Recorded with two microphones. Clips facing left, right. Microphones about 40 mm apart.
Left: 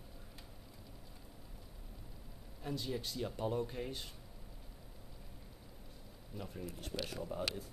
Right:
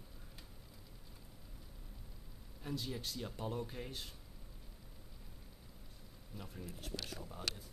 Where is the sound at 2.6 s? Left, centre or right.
Centre.